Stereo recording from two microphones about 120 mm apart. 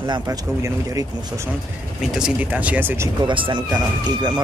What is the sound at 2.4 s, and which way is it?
Speech, 10° right (ahead or behind).